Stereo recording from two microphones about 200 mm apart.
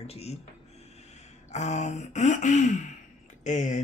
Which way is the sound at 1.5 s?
35° left (ahead or behind).